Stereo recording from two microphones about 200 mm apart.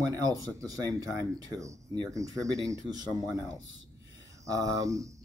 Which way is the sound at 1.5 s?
15° right (ahead or behind).